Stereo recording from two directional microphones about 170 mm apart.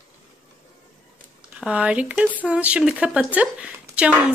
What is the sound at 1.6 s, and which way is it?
Speech, 5° right (ahead or behind).